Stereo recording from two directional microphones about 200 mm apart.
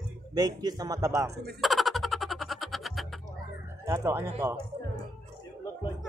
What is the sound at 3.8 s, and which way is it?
Speech, 15° right (ahead or behind).